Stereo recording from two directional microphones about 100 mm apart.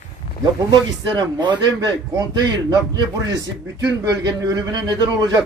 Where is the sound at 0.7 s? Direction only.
50° right (ahead or behind).